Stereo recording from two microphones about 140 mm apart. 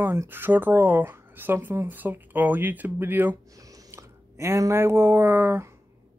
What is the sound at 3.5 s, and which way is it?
Speech, 25° right (ahead or behind).